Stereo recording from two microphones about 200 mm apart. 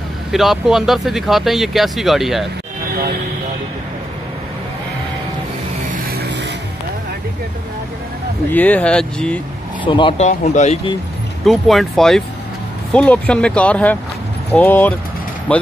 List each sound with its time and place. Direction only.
0.3 s speech: centre (ahead or behind)
2.9 s vehicle: 45° right (ahead or behind)
5.9 s vehicle: 50° right (ahead or behind)
8.5 s speech: 10° left (ahead or behind)
9.8 s speech: 25° left (ahead or behind)
10.2 s speech: 35° left (ahead or behind)
11.4 s speech: centre (ahead or behind)